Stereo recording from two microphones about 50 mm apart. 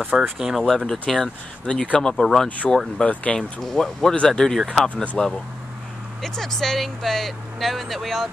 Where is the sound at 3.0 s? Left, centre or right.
Centre.